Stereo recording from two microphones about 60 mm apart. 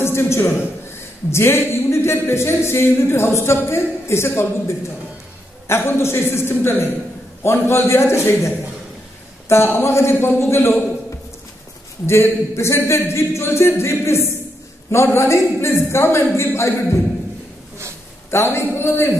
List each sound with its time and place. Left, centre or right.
0.0 s a man's voice: left
12.1 s speech: left
18.3 s speech: left